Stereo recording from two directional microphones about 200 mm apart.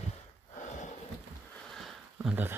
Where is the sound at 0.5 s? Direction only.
35° left (ahead or behind).